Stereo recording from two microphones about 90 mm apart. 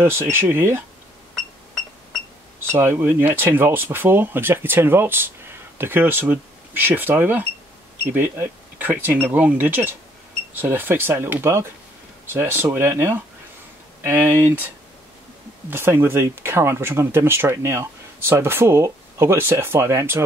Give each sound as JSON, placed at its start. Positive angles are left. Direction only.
{"t": 0.0, "sound": "speech", "side_deg": -25}
{"t": 2.7, "sound": "speech", "side_deg": -25}
{"t": 15.7, "sound": "speech", "side_deg": -25}